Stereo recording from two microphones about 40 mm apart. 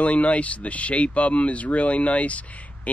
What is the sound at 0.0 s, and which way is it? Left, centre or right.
Speech, left.